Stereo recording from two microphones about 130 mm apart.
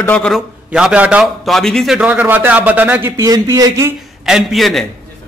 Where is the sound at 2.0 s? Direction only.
10° right (ahead or behind).